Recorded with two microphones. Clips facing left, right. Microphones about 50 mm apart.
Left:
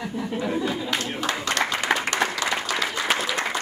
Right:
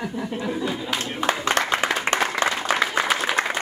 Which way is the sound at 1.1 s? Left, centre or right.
Right.